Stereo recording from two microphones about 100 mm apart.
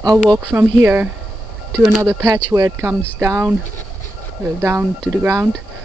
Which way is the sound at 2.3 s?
35° right (ahead or behind).